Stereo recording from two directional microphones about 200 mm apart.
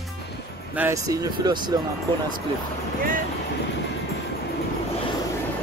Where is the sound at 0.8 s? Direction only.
15° right (ahead or behind).